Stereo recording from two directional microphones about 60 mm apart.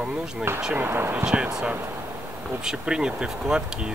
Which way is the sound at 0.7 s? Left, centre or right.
Right.